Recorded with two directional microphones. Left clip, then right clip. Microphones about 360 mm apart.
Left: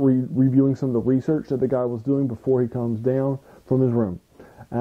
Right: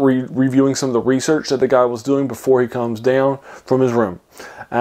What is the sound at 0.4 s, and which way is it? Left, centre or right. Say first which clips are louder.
Speech: right 5 dB; centre.